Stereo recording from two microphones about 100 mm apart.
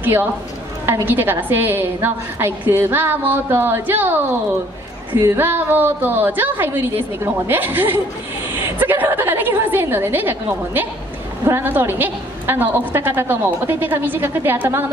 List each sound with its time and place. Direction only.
0.0 s a woman's voice: 20° right (ahead or behind)